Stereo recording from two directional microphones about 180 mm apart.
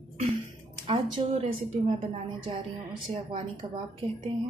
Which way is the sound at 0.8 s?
30° right (ahead or behind).